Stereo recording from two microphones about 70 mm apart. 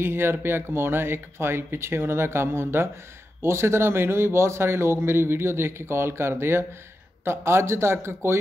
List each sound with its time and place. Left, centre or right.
0.0 s a man's voice: right